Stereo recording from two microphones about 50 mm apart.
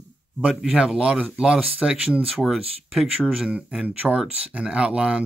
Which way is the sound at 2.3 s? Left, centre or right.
Centre.